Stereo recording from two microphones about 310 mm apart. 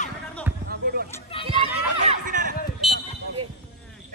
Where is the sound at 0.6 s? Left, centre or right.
Right.